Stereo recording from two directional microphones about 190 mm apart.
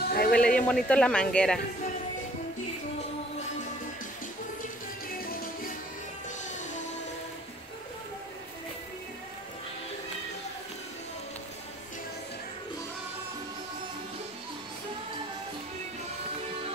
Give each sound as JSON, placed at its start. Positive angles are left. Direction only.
{"t": 0.1, "sound": "a sound", "side_deg": 50}
{"t": 0.6, "sound": "speech", "side_deg": 5}
{"t": 5.2, "sound": "music", "side_deg": 50}